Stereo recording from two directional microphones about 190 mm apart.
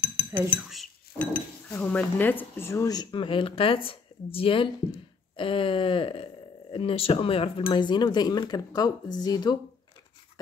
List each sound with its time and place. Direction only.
0.4 s chink: centre (ahead or behind)
1.7 s speech: 5° left (ahead or behind)